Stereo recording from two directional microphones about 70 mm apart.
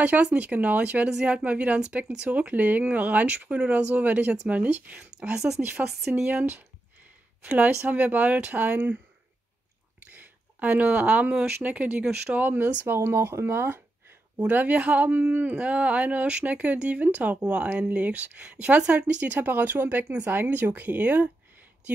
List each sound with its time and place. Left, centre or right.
0.0 s speech: right
5.3 s speech: centre
7.4 s speech: right
10.1 s speech: right
14.4 s speech: right